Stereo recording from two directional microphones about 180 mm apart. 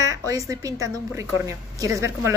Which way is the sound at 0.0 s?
20° right (ahead or behind).